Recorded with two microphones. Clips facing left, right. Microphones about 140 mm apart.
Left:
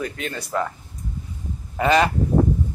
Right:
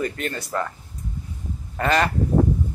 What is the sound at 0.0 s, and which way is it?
Speech, centre (ahead or behind).